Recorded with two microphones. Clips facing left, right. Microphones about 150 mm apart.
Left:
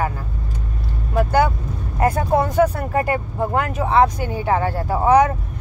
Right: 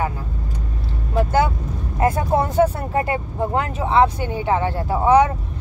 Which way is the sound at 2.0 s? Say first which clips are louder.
Left 1 dB; 25° right (ahead or behind).